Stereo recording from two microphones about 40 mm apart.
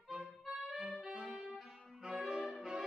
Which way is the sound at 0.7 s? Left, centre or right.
Centre.